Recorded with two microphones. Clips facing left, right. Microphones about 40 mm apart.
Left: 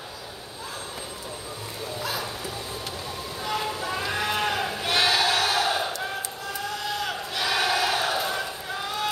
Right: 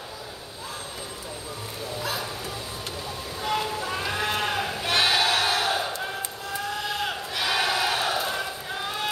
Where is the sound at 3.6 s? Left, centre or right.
Centre.